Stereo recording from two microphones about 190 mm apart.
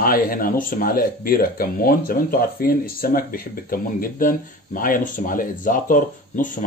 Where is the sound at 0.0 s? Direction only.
50° left (ahead or behind).